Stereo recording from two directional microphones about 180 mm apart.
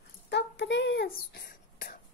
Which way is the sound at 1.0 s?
60° left (ahead or behind).